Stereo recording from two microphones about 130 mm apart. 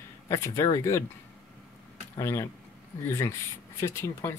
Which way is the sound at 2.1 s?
20° left (ahead or behind).